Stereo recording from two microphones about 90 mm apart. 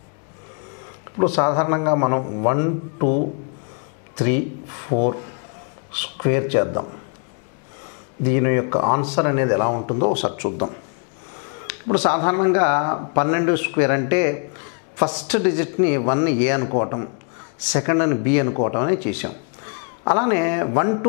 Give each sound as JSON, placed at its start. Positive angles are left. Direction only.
{"t": 1.1, "sound": "a man's voice", "side_deg": 15}
{"t": 8.3, "sound": "a man's voice", "side_deg": 15}